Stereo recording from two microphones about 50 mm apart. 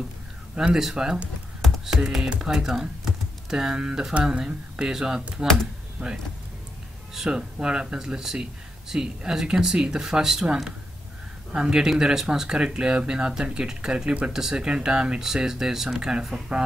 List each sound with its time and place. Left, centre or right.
0.6 s speech: centre
6.0 s speech: right
7.2 s speech: centre